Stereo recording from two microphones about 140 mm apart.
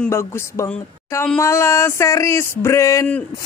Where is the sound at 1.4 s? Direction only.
20° left (ahead or behind).